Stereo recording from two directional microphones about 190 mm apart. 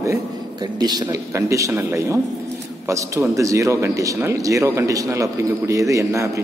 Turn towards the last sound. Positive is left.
turn(degrees=-15)  # may be behind; listen again after turning